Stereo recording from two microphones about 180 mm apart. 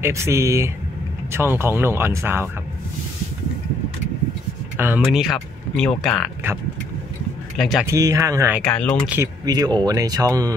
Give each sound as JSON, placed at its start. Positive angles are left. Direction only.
{"t": 0.0, "sound": "speech", "side_deg": -15}
{"t": 4.7, "sound": "speech", "side_deg": -10}
{"t": 5.1, "sound": "speech", "side_deg": 0}
{"t": 7.5, "sound": "speech", "side_deg": 0}
{"t": 7.9, "sound": "speech", "side_deg": -15}
{"t": 8.6, "sound": "speech", "side_deg": 5}
{"t": 9.0, "sound": "speech", "side_deg": -10}
{"t": 9.4, "sound": "speech", "side_deg": -20}